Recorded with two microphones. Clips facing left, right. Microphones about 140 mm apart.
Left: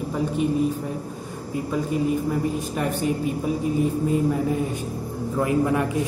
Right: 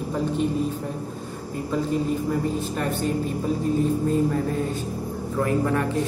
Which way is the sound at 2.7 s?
10° left (ahead or behind).